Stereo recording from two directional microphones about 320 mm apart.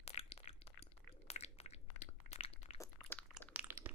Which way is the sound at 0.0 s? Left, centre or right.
Centre.